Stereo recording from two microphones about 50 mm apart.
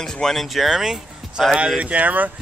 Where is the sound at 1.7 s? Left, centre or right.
Right.